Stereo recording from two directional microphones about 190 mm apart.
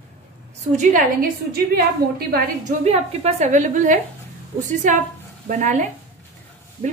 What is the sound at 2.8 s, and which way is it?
A woman's voice, 35° right (ahead or behind).